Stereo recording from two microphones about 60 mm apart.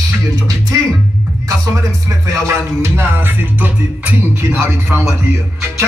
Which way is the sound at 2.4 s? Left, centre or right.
Right.